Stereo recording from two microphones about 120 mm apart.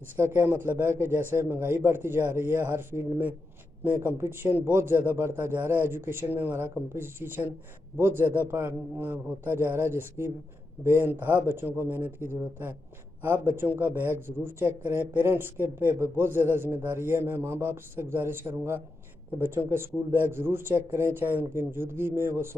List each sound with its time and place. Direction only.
0.1 s a man's voice: 20° right (ahead or behind)